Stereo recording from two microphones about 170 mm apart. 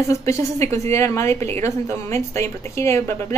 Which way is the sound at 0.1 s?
15° left (ahead or behind).